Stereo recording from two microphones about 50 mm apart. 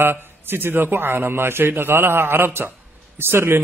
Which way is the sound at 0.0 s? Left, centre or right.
Right.